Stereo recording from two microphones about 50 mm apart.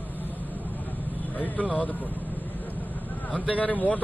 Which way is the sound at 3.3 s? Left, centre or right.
Left.